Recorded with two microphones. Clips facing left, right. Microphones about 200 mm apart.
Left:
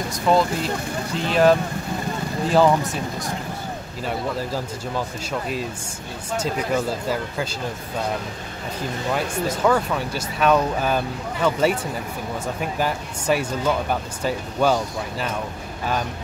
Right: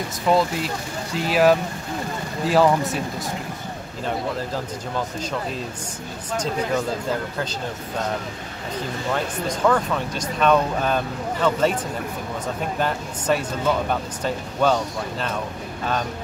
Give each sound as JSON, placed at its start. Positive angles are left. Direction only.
{"t": 0.3, "sound": "speech", "side_deg": 0}
{"t": 9.1, "sound": "speech", "side_deg": 10}